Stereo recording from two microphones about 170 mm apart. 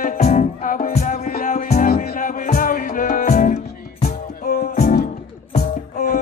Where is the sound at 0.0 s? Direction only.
45° left (ahead or behind).